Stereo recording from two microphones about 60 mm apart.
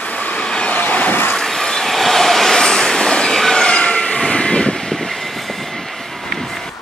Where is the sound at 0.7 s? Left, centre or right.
Left.